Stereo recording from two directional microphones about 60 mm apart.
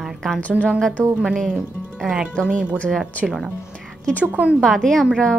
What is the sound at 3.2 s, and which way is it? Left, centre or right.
Speech, centre.